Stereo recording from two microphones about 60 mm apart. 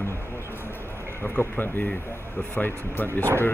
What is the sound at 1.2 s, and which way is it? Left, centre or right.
Speech, left.